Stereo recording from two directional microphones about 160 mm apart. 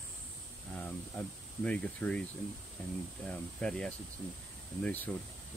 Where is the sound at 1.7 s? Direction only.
5° left (ahead or behind).